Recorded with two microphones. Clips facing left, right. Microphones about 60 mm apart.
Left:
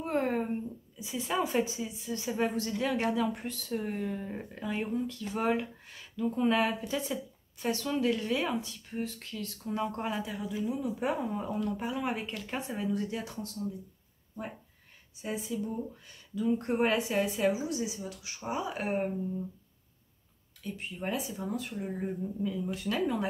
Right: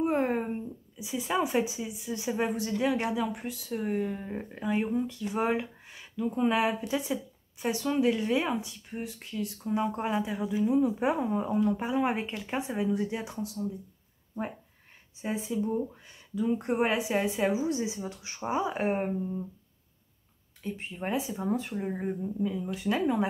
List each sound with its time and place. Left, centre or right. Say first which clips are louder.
0.0 s a woman's voice: right 3 dB; centre
8.9 s speech: left 1 dB; centre
9.2 s a woman's voice: right 5 dB; centre
15.2 s a woman's voice: right 4 dB; right
16.3 s a woman's voice: right 1 dB; centre
20.6 s a woman's voice: right 2 dB; right